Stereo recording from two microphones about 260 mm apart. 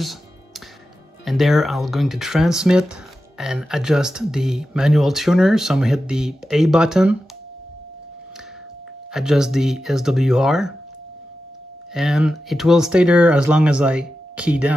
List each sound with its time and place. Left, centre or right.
1.2 s speech: centre
9.1 s speech: centre
11.9 s speech: centre